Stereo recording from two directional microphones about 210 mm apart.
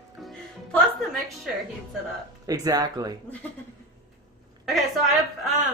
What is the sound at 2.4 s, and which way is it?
Speech, 15° right (ahead or behind).